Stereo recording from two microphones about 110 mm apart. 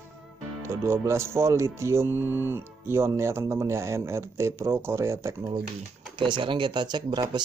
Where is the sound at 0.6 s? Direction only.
25° right (ahead or behind).